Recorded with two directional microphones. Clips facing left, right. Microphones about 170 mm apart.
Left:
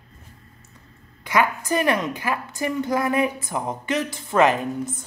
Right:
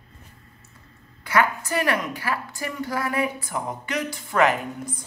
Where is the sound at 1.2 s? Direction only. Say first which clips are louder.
Left 1 dB; 20° left (ahead or behind).